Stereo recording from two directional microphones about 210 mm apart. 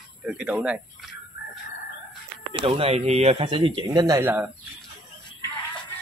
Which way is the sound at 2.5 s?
25° right (ahead or behind).